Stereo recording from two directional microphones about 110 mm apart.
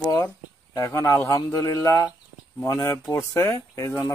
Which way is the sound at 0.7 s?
30° left (ahead or behind).